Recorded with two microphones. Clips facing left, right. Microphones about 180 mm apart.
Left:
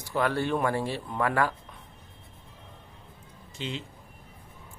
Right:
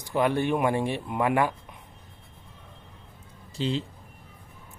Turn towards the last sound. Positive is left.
turn(degrees=-35)  # may be behind; listen again after turning